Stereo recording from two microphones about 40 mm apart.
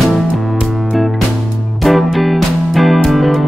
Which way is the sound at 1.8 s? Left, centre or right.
Centre.